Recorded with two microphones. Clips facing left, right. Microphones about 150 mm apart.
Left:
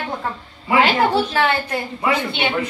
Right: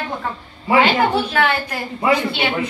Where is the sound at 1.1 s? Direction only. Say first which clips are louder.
Even; 30° left (ahead or behind).